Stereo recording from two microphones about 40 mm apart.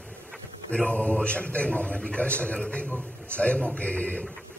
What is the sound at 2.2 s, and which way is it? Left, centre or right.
A man's voice, left.